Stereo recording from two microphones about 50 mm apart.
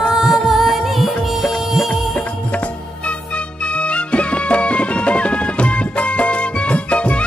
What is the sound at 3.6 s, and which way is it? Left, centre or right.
Music, left.